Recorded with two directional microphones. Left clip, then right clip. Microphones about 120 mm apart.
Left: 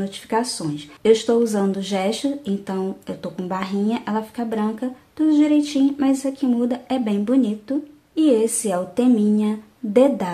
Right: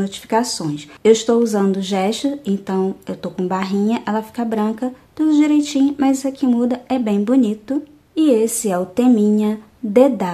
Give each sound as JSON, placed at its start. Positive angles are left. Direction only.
{"t": 0.0, "sound": "speech", "side_deg": -35}